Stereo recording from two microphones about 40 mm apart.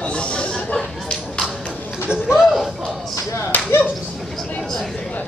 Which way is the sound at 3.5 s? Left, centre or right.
Left.